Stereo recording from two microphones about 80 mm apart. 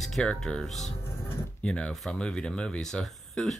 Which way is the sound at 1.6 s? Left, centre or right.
Centre.